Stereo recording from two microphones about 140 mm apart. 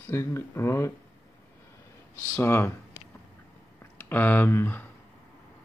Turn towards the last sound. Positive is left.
turn(degrees=15)  # may be behind; listen again after turning